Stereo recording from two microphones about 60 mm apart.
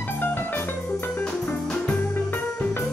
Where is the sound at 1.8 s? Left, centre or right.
Left.